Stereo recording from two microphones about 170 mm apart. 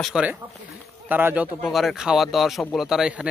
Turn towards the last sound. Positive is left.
turn(degrees=-5)  # may be behind; listen again after turning